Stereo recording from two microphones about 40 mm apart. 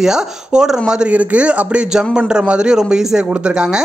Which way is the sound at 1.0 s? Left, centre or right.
Right.